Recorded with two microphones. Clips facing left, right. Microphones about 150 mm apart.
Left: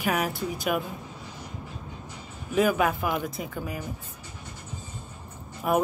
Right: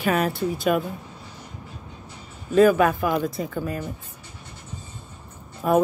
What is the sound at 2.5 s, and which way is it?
Speech, 15° left (ahead or behind).